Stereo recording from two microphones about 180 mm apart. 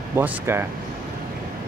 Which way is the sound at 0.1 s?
15° right (ahead or behind).